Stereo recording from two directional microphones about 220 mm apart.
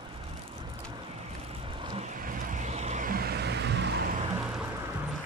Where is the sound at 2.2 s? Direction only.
40° right (ahead or behind).